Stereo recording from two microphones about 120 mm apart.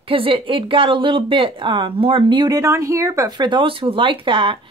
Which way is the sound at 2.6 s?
30° right (ahead or behind).